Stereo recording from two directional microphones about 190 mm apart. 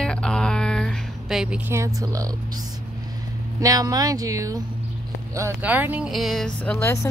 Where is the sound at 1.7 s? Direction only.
15° right (ahead or behind).